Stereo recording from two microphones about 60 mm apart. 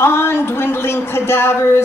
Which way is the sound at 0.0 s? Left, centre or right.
Left.